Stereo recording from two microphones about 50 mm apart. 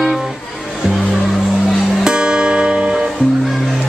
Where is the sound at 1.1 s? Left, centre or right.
Centre.